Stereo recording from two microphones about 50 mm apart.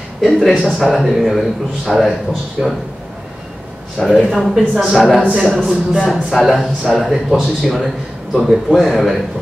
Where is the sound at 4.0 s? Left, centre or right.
Centre.